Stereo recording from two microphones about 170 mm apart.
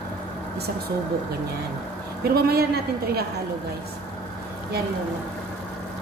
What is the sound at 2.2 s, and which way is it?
A woman's voice, 65° right (ahead or behind).